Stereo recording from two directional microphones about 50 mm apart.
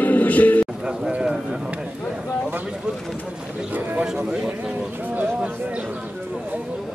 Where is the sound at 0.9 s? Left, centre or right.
Right.